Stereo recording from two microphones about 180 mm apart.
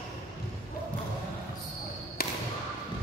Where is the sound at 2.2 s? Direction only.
60° left (ahead or behind).